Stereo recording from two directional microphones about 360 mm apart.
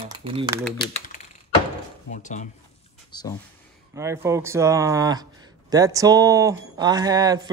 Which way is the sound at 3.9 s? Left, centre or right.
Centre.